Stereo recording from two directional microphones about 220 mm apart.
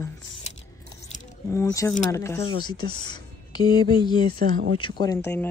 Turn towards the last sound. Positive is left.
turn(degrees=15)  # may be behind; listen again after turning